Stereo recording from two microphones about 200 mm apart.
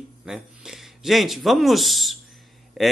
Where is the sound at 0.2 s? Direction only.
Centre (ahead or behind).